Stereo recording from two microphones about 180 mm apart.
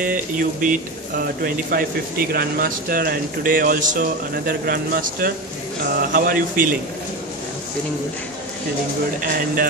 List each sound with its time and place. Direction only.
0.0 s speech: 50° right (ahead or behind)